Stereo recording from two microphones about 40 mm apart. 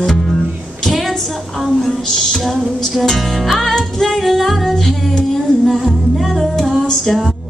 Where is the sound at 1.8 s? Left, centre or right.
Centre.